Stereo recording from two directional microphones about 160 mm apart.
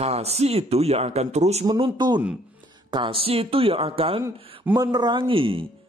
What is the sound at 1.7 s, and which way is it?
A man's voice, 25° right (ahead or behind).